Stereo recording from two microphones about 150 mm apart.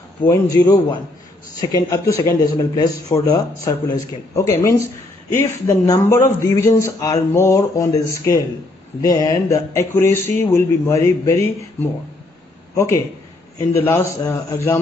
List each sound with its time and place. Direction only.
0.2 s a man's voice: 20° left (ahead or behind)
12.7 s a man's voice: 20° left (ahead or behind)